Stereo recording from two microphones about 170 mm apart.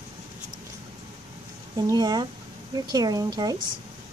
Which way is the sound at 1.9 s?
25° right (ahead or behind).